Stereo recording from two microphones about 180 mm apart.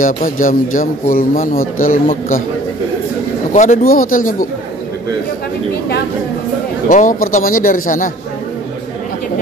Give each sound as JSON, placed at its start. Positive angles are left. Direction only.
{"t": 0.0, "sound": "a man's voice", "side_deg": 50}
{"t": 3.5, "sound": "a man's voice", "side_deg": 40}
{"t": 6.9, "sound": "a man's voice", "side_deg": 45}